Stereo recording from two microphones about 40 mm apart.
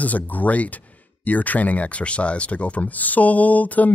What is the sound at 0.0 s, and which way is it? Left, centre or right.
Speech, left.